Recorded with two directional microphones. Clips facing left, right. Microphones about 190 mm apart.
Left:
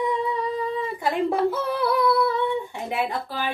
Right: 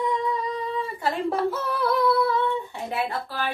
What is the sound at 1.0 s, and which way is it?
Speech, 15° left (ahead or behind).